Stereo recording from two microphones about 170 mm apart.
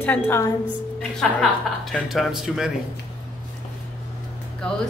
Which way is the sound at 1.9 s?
Centre (ahead or behind).